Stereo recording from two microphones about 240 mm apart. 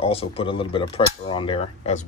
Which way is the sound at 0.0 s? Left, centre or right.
Left.